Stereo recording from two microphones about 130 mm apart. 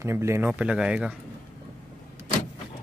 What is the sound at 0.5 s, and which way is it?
Speech, 10° right (ahead or behind).